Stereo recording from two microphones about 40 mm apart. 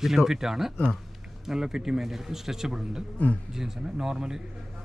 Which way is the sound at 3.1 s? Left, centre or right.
Left.